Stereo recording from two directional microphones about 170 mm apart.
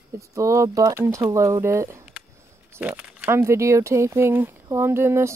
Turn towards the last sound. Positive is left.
turn(degrees=-15)  # may be behind; listen again after turning